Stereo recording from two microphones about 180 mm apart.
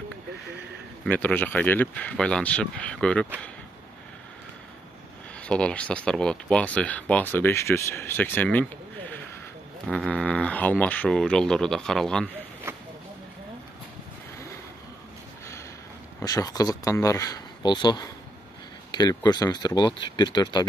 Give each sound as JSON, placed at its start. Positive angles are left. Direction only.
{"t": 1.0, "sound": "speech", "side_deg": 10}
{"t": 5.4, "sound": "speech", "side_deg": 5}
{"t": 12.7, "sound": "a sound", "side_deg": -15}
{"t": 16.2, "sound": "speech", "side_deg": 20}